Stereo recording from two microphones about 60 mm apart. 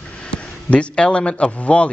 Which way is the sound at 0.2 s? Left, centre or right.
Centre.